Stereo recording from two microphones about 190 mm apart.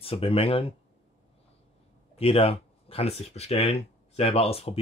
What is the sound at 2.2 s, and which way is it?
Speech, 30° left (ahead or behind).